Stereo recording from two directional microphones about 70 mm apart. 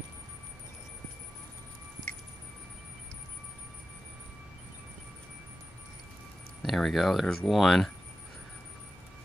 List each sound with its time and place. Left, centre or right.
6.6 s speech: centre